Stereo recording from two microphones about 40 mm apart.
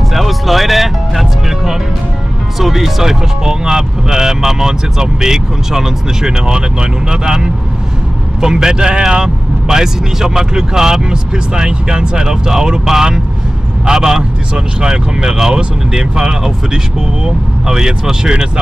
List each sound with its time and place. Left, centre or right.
0.1 s music: centre
2.6 s speech: centre